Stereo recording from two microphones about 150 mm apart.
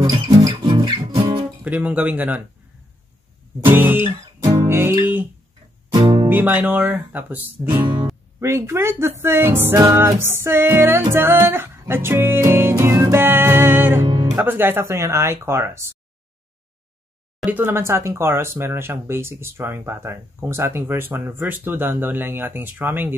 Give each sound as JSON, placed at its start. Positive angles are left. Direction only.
{"t": 0.0, "sound": "music", "side_deg": -30}
{"t": 1.6, "sound": "speech", "side_deg": -10}
{"t": 3.7, "sound": "music", "side_deg": -15}
{"t": 4.6, "sound": "speech", "side_deg": -15}
{"t": 5.9, "sound": "music", "side_deg": -30}
{"t": 6.2, "sound": "speech", "side_deg": -10}
{"t": 7.8, "sound": "music", "side_deg": -30}
{"t": 8.4, "sound": "speech", "side_deg": -20}
{"t": 17.5, "sound": "speech", "side_deg": -15}